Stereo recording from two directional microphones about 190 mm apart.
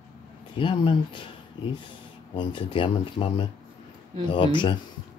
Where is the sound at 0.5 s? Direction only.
25° left (ahead or behind).